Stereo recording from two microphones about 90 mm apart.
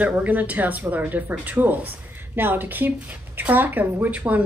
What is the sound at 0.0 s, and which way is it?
Speech, 15° right (ahead or behind).